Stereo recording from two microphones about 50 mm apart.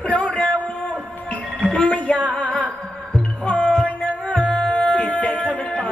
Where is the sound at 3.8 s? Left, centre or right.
Left.